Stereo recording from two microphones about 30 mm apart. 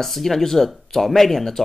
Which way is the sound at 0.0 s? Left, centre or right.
Centre.